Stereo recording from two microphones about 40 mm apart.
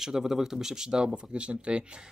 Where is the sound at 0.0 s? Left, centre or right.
Centre.